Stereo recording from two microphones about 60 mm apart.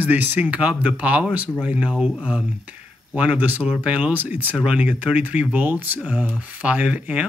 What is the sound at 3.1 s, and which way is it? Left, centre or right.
Speech, right.